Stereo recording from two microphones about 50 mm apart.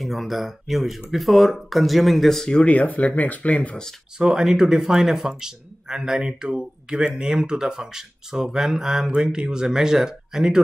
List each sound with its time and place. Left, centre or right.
0.0 s speech: centre
2.5 s speech: left
4.2 s speech: centre